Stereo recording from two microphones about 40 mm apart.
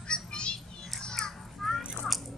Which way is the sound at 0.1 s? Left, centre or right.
Left.